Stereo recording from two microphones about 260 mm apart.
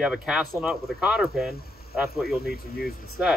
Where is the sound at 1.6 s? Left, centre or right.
Left.